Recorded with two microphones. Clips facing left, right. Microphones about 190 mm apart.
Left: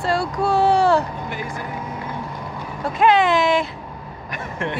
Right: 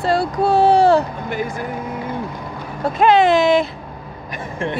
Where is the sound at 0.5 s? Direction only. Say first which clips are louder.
Right 4 dB; 35° right (ahead or behind).